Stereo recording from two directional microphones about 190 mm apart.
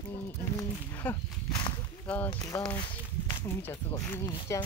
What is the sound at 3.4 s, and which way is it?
Speech, 15° left (ahead or behind).